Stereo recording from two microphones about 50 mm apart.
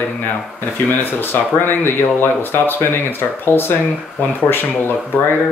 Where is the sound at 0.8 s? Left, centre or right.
Left.